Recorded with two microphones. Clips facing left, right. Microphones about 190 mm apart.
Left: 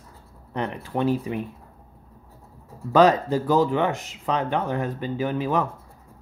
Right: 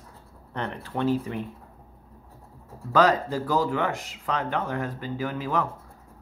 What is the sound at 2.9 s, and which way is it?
Speech, 20° left (ahead or behind).